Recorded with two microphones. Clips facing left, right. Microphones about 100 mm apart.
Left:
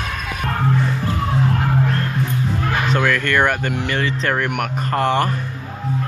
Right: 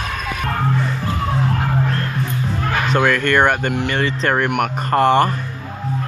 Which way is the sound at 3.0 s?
20° right (ahead or behind).